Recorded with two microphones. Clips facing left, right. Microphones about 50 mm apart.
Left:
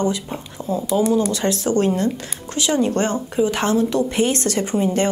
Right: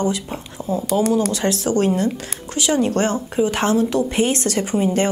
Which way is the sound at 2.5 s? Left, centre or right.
Right.